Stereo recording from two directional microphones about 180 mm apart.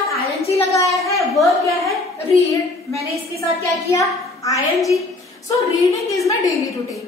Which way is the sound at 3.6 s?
15° left (ahead or behind).